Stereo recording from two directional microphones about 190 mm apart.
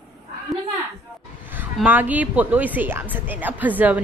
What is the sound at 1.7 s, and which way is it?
Speech, 10° right (ahead or behind).